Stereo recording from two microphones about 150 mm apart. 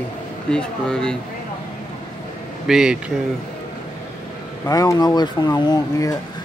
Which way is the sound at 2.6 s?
5° right (ahead or behind).